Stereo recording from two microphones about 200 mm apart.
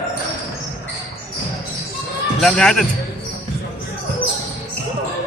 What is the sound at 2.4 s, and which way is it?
Speech, centre (ahead or behind).